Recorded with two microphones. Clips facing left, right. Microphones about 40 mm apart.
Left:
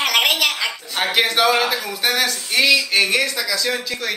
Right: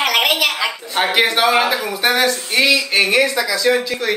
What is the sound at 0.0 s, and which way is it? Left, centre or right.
A woman's voice, centre.